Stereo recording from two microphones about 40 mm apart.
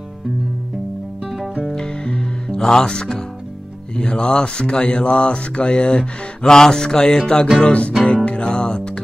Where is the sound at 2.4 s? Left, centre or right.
Centre.